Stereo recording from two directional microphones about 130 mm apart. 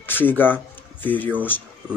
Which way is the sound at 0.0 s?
15° left (ahead or behind).